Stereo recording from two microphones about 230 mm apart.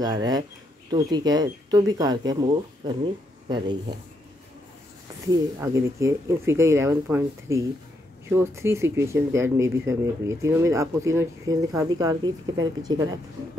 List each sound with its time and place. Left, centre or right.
0.0 s speech: centre
5.3 s speech: centre